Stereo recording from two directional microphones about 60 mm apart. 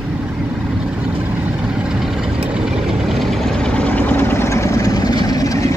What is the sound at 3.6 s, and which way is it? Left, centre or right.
Vehicle, left.